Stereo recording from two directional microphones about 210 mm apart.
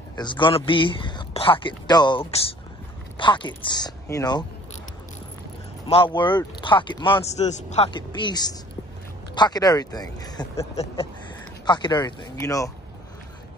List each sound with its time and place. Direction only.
0.1 s speech: 20° left (ahead or behind)
5.9 s speech: 25° left (ahead or behind)